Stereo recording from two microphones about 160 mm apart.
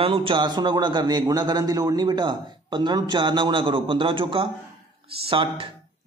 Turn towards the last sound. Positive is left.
turn(degrees=-35)  # may be behind; listen again after turning